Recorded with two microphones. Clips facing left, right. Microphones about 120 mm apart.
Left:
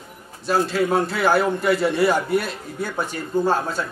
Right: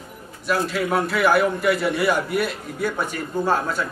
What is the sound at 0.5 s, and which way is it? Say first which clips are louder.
A man's voice: left 2 dB; 30° left (ahead or behind).